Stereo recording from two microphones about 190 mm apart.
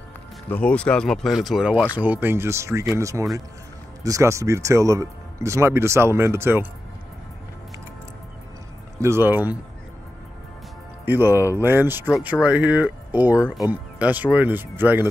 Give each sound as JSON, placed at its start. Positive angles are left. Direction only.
{"t": 0.5, "sound": "speech", "side_deg": 5}
{"t": 9.0, "sound": "speech", "side_deg": -10}
{"t": 11.1, "sound": "speech", "side_deg": -10}